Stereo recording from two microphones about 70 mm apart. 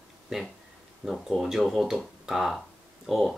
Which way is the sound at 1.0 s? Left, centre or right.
Centre.